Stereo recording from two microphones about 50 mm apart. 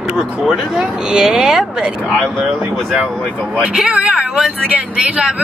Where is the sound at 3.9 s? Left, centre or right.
Right.